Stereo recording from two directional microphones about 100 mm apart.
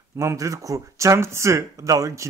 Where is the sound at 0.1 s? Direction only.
30° right (ahead or behind).